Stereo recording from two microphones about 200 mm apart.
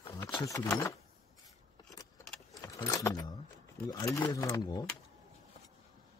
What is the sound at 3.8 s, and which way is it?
Speech, 20° left (ahead or behind).